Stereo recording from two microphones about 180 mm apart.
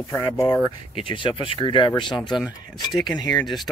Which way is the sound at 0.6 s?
30° left (ahead or behind).